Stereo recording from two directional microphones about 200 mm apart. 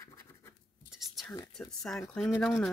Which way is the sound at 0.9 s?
Centre (ahead or behind).